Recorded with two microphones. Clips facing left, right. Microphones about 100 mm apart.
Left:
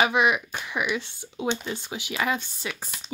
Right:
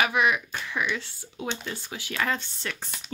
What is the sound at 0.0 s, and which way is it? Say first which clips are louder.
Speech: left 2 dB; 20° left (ahead or behind).